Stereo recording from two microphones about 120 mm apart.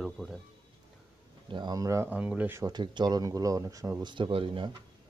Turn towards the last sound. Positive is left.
turn(degrees=-45)  # may be behind; listen again after turning